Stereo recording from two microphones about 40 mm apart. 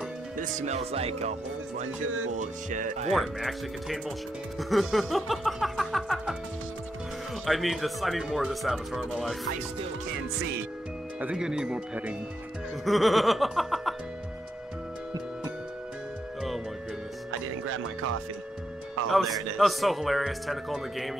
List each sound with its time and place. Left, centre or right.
3.1 s a man's voice: centre
7.4 s a man's voice: centre
11.3 s speech: centre
12.8 s a man's voice: centre
19.0 s a man's voice: centre